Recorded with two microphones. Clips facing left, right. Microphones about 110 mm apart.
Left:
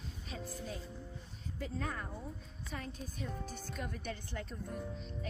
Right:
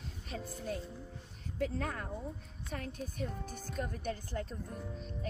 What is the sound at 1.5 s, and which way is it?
A woman's voice, 60° right (ahead or behind).